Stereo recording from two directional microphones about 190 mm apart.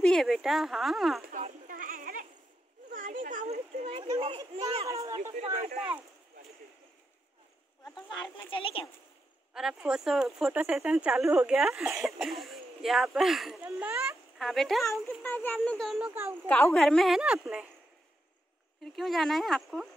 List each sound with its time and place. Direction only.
0.0 s speech: centre (ahead or behind)
1.2 s a sound: 45° right (ahead or behind)
4.2 s children playing: 25° right (ahead or behind)
4.8 s a sound: 15° right (ahead or behind)
5.3 s speech: 35° right (ahead or behind)
7.9 s a sound: 25° left (ahead or behind)
8.5 s speech: 25° left (ahead or behind)
9.5 s a child's voice: 5° right (ahead or behind)
16.4 s speech: 10° left (ahead or behind)
18.9 s speech: centre (ahead or behind)